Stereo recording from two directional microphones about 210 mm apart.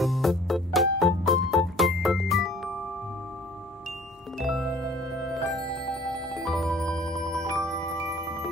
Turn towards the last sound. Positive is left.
turn(degrees=5)  # may be behind; listen again after turning